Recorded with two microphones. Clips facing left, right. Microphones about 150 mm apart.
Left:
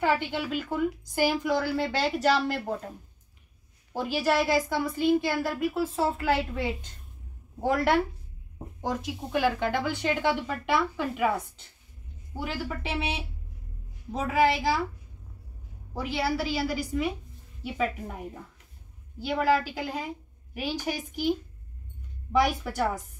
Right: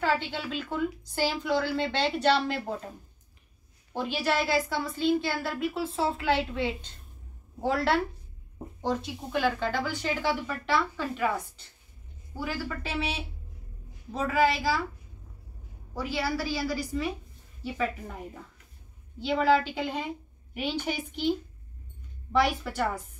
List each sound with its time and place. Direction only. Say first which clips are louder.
0.0 s speech: left 2 dB; 15° left (ahead or behind)
15.9 s a woman's voice: left 2 dB; 20° left (ahead or behind)